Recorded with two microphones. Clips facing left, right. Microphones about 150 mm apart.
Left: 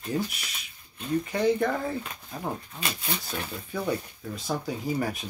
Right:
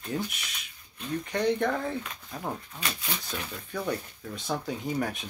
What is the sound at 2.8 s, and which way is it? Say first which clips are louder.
Speech: left 2 dB; 35° left (ahead or behind).